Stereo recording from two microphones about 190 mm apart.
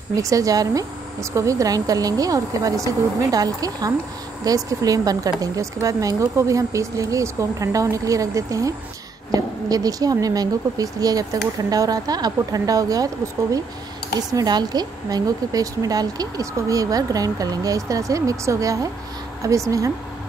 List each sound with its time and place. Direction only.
0.1 s a woman's voice: 15° right (ahead or behind)